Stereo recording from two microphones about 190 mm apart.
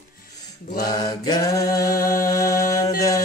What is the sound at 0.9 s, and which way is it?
Mantra, 20° left (ahead or behind).